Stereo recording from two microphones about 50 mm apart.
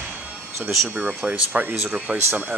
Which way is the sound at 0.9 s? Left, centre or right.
Right.